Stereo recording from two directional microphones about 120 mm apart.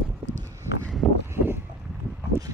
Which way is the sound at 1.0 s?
Centre (ahead or behind).